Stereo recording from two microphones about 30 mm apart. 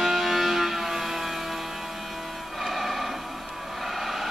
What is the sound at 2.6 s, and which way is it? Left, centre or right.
Music, centre.